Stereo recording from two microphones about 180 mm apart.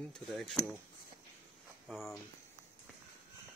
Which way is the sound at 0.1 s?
Centre (ahead or behind).